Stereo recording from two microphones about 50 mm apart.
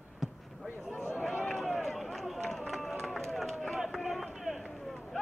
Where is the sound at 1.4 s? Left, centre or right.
Centre.